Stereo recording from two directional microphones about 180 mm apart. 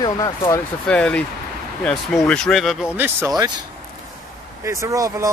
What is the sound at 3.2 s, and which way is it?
Speech, 20° right (ahead or behind).